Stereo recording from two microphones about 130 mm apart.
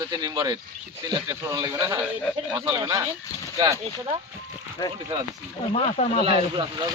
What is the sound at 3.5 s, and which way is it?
Speech, 30° right (ahead or behind).